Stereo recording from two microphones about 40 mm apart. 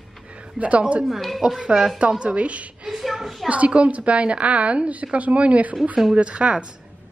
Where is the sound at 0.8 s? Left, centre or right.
Right.